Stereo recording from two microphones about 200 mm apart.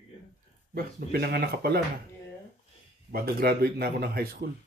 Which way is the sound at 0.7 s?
50° right (ahead or behind).